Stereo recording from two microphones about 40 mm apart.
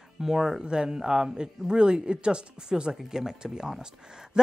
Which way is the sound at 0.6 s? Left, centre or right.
Right.